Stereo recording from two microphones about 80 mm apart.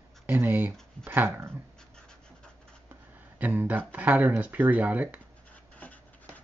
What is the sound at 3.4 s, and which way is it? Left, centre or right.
Speech, right.